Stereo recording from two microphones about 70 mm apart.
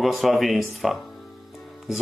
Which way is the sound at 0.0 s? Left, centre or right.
Centre.